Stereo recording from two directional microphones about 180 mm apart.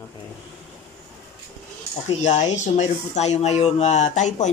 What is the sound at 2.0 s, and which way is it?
Speech, 40° left (ahead or behind).